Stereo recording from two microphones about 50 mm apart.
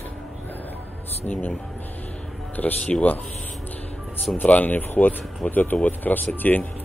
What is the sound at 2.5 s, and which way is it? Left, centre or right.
Speech, left.